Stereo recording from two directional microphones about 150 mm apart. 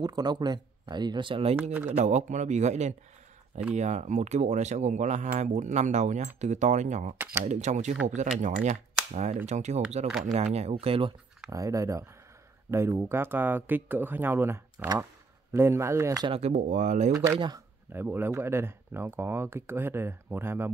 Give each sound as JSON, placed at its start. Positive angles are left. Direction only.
{"t": 0.0, "sound": "speech", "side_deg": -25}
{"t": 1.6, "sound": "speech", "side_deg": -15}
{"t": 1.9, "sound": "speech", "side_deg": -50}
{"t": 11.5, "sound": "speech", "side_deg": -20}
{"t": 16.3, "sound": "speech", "side_deg": -45}
{"t": 17.1, "sound": "speech", "side_deg": -15}